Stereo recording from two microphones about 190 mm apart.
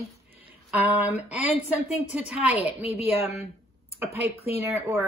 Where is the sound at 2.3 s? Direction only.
35° left (ahead or behind).